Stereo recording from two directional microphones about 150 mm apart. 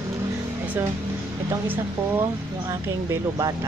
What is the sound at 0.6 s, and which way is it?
Music, 10° right (ahead or behind).